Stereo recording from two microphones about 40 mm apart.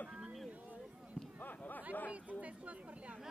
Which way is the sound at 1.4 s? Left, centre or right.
Left.